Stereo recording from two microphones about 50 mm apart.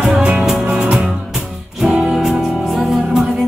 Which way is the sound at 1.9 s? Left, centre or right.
Right.